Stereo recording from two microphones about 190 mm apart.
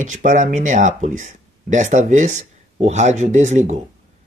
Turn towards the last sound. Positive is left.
turn(degrees=-40)  # may be behind; listen again after turning